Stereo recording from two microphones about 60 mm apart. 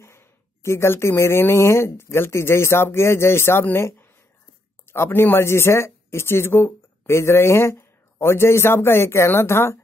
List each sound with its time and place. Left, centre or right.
0.0 s speech: left